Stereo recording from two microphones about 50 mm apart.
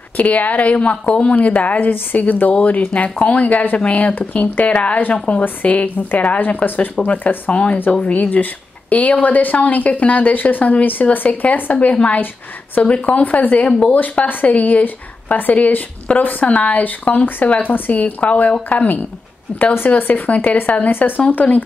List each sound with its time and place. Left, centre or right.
0.2 s a woman's voice: left
20.0 s speech: left